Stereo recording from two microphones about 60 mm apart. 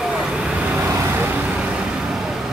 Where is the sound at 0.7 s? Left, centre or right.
Right.